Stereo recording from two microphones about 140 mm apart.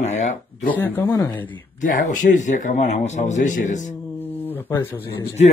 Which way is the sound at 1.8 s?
70° left (ahead or behind).